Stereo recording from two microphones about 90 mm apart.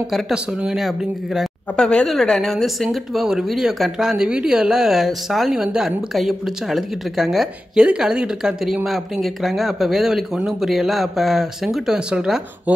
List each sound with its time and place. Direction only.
0.1 s speech: 10° right (ahead or behind)